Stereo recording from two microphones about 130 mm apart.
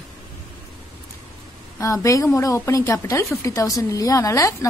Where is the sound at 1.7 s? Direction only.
25° left (ahead or behind).